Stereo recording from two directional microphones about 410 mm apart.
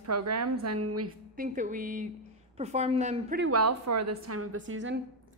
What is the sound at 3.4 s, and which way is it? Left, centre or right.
A woman's voice, right.